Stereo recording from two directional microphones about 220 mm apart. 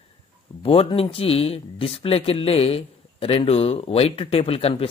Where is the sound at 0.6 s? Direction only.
25° left (ahead or behind).